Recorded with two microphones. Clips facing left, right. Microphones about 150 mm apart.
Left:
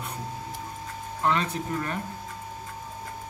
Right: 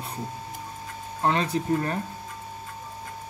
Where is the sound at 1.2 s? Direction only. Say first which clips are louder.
Right 3 dB; 35° right (ahead or behind).